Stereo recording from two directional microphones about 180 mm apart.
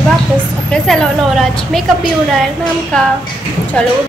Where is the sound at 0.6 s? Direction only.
5° left (ahead or behind).